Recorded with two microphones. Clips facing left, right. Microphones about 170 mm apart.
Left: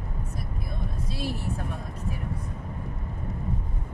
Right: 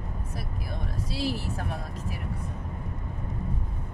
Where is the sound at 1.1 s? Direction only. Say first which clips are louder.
Right 2 dB; 90° right.